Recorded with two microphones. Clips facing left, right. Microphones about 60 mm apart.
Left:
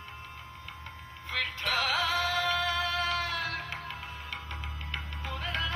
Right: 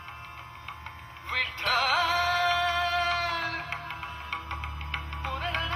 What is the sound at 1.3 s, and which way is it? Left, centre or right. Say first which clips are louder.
Music: right 4 dB; right.